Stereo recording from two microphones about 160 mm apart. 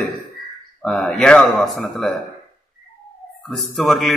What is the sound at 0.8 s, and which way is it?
A man's voice, 5° left (ahead or behind).